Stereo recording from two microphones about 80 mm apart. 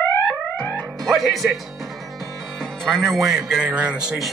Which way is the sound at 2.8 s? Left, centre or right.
Centre.